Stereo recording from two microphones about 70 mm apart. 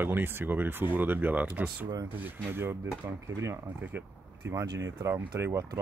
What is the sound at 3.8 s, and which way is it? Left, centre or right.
Speech, right.